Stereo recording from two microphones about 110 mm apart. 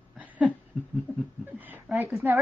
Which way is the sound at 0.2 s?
15° right (ahead or behind).